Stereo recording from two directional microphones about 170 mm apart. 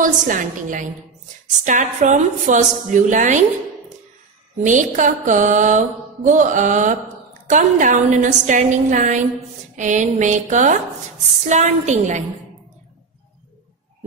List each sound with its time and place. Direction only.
0.0 s mantra: 50° right (ahead or behind)
4.6 s mantra: 45° right (ahead or behind)